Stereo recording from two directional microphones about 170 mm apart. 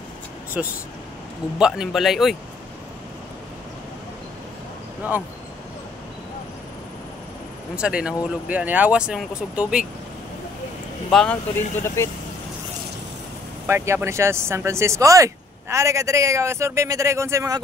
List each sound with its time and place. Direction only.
0.6 s speech: 10° right (ahead or behind)
5.0 s speech: 10° right (ahead or behind)
7.7 s speech: 5° right (ahead or behind)
11.1 s speech: 5° left (ahead or behind)
12.0 s speech: 15° left (ahead or behind)
13.7 s speech: 15° right (ahead or behind)